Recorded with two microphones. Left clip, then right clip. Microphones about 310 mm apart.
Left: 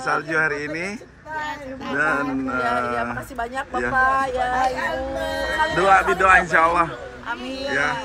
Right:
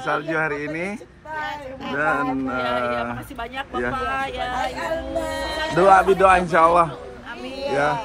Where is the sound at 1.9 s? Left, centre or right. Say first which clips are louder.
Even; centre.